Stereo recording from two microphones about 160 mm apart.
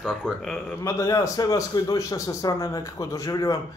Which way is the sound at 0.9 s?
20° left (ahead or behind).